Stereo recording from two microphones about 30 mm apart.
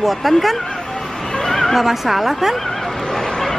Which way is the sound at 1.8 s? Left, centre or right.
Centre.